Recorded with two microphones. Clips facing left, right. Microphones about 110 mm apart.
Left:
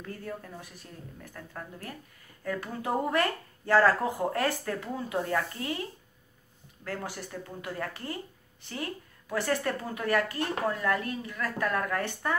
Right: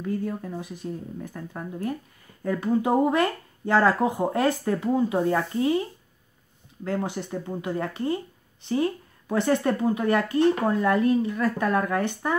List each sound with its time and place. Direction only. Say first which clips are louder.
0.0 s speech: right 10 dB; 15° right (ahead or behind)
6.8 s speech: right 8 dB; 20° right (ahead or behind)